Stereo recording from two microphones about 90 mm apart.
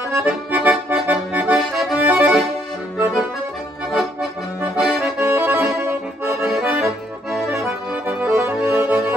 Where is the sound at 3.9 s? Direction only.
5° right (ahead or behind).